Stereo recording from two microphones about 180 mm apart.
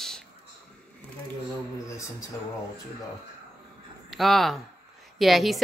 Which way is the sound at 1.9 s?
15° left (ahead or behind).